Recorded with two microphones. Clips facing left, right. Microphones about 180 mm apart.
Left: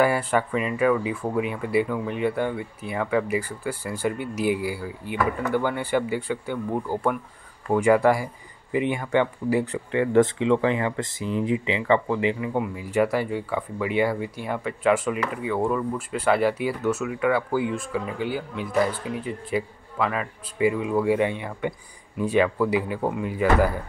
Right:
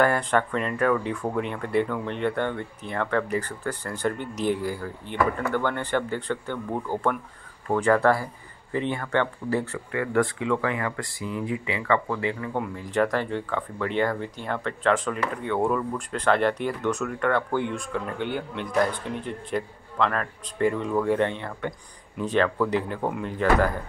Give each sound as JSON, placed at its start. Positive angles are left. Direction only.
{"t": 0.0, "sound": "speech", "side_deg": 5}
{"t": 9.8, "sound": "speech", "side_deg": 25}
{"t": 12.5, "sound": "speech", "side_deg": 5}